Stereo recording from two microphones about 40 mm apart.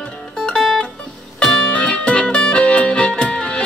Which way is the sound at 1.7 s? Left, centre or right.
Left.